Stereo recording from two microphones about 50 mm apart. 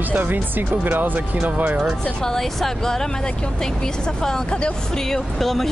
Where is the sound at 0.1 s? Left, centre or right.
Right.